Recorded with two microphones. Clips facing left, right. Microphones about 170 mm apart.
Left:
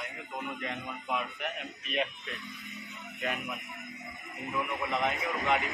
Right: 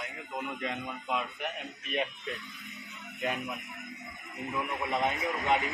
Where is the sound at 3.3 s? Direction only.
Centre (ahead or behind).